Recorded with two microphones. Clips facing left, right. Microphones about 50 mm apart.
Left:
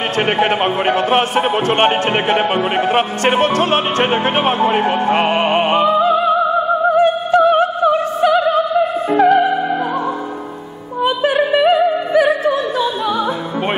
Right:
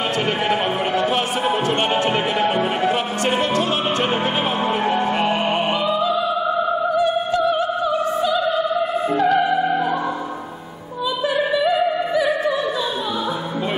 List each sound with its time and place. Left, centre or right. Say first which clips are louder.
0.4 s a sound: left 5 dB; left
1.7 s speech: left 5 dB; left
4.6 s opera: left 5 dB; left
9.2 s music: left 7 dB; left
11.2 s opera: left 5 dB; left